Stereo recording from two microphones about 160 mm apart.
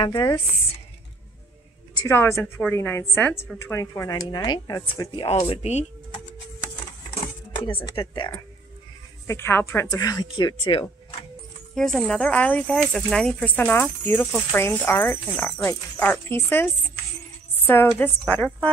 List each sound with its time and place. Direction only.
0.0 s speech: 25° left (ahead or behind)
2.0 s speech: 15° left (ahead or behind); by 5.9 s 45° left (ahead or behind)
7.8 s speech: 25° left (ahead or behind)
9.3 s speech: 15° left (ahead or behind); by 10.9 s 30° left (ahead or behind)
11.7 s speech: centre (ahead or behind)
17.6 s speech: 10° left (ahead or behind)